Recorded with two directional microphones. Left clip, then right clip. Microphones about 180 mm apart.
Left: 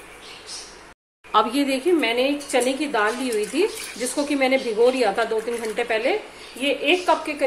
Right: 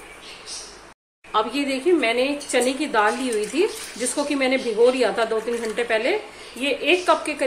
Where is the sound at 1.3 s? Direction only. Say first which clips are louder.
Left 3 dB; 15° left (ahead or behind).